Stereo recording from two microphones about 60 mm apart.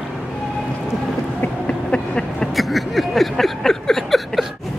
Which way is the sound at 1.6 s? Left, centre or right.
Centre.